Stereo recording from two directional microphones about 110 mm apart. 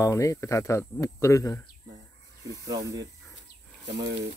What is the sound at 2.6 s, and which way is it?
Speech, 35° right (ahead or behind).